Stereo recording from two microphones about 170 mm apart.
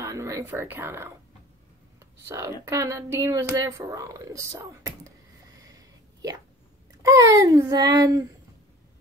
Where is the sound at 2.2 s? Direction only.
15° right (ahead or behind).